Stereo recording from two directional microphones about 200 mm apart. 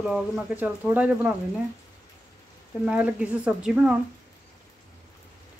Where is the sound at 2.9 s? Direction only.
5° right (ahead or behind).